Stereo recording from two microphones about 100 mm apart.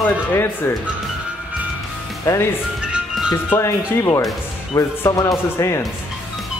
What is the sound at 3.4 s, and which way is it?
Speech, 25° left (ahead or behind).